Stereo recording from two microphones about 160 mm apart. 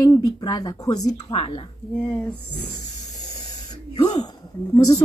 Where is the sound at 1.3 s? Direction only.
35° left (ahead or behind).